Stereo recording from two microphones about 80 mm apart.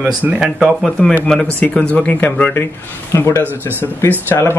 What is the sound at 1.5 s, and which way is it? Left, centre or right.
Speech, centre.